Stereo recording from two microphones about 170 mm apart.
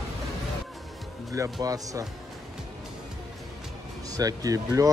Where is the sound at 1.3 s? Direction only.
20° right (ahead or behind).